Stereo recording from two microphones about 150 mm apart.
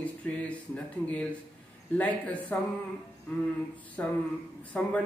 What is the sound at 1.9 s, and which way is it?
Speech, 10° left (ahead or behind).